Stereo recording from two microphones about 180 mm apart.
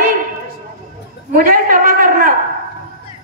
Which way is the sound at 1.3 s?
50° right (ahead or behind).